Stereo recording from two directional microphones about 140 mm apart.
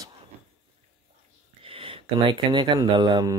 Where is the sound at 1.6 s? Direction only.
40° right (ahead or behind).